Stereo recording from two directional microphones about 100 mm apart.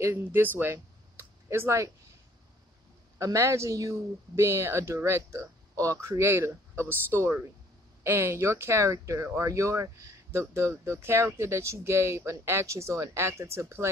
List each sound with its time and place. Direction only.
0.0 s speech: 25° right (ahead or behind)
3.2 s speech: 30° right (ahead or behind)